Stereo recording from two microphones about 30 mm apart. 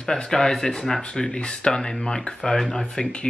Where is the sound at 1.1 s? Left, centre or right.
Left.